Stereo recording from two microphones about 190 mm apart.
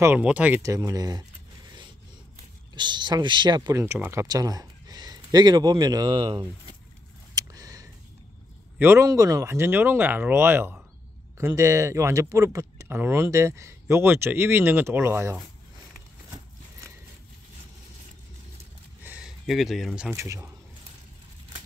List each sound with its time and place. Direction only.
0.0 s speech: 10° right (ahead or behind)
2.7 s speech: 25° right (ahead or behind)
7.3 s a sound: 20° right (ahead or behind)
8.7 s speech: 10° right (ahead or behind)
19.0 s speech: 5° right (ahead or behind)